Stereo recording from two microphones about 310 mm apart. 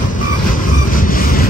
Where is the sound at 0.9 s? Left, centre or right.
Left.